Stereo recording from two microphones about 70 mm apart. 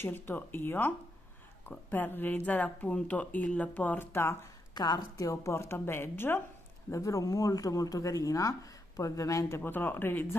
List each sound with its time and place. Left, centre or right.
0.0 s speech: left
4.1 s a woman's voice: left
4.7 s a woman's voice: left
5.1 s a woman's voice: left
6.9 s speech: left
9.6 s a woman's voice: left